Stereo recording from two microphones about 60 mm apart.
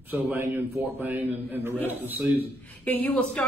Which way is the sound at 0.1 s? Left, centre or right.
Right.